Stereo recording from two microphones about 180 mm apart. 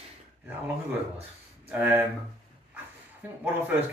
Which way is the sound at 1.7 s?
10° right (ahead or behind).